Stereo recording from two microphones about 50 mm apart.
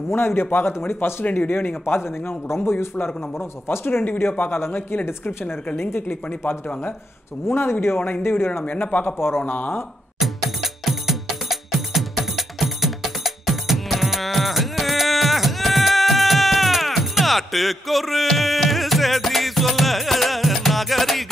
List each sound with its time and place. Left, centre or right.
0.1 s a man's voice: left
5.8 s speech: left
7.4 s a man's voice: left
8.6 s speech: left
9.0 s speech: left
9.5 s a man's voice: left
10.1 s music: centre